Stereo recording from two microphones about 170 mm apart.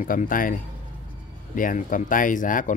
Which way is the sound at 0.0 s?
55° left (ahead or behind).